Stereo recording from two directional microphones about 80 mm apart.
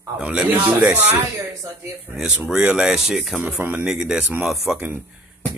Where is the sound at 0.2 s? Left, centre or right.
Centre.